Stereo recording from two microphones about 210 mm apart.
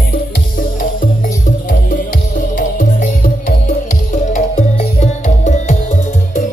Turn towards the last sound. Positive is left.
turn(degrees=35)  # may be behind; listen again after turning